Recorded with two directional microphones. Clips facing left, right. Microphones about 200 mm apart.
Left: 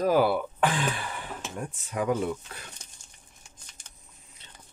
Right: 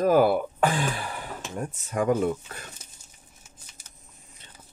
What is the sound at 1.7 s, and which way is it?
Speech, 45° right (ahead or behind).